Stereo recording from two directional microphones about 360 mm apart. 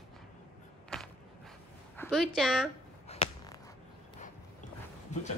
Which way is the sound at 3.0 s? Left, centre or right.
Centre.